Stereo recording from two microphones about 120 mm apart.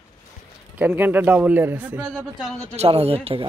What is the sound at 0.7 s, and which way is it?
A man's voice, 15° right (ahead or behind).